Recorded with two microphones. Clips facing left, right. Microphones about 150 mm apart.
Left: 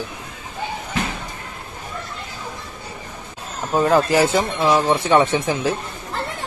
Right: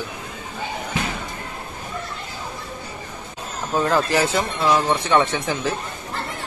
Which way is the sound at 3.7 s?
10° left (ahead or behind).